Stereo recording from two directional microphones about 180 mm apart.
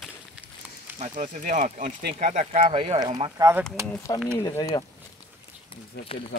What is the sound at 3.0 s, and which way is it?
Speech, 20° right (ahead or behind).